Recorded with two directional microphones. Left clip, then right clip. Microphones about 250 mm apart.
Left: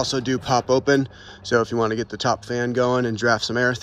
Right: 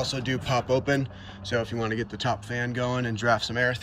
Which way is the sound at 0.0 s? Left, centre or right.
Centre.